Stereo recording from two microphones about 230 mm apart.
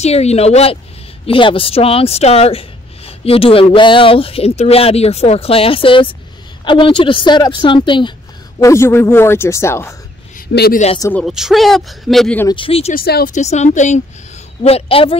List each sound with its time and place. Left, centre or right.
0.0 s a woman's voice: left; by 9.9 s centre
10.3 s a sound: left
11.0 s a woman's voice: centre
11.2 s speech: centre
12.4 s speech: left
12.9 s speech: left